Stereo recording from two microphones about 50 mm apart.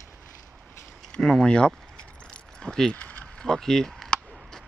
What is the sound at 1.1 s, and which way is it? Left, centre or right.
Speech, centre.